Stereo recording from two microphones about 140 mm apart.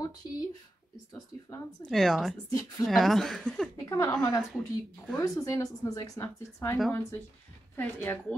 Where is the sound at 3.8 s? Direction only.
20° left (ahead or behind).